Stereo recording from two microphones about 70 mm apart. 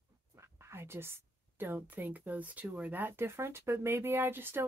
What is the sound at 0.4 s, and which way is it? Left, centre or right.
A woman's voice, right.